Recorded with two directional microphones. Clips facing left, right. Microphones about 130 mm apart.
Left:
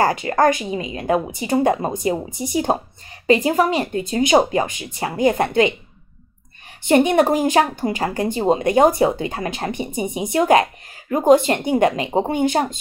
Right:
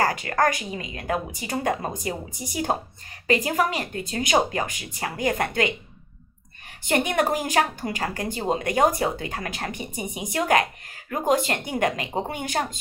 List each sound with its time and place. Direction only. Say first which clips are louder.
0.0 s speech: left 6 dB; 25° left (ahead or behind)
6.9 s speech: left 8 dB; 25° left (ahead or behind)